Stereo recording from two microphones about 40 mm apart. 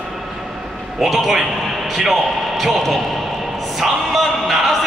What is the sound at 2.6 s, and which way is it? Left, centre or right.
Speech, centre.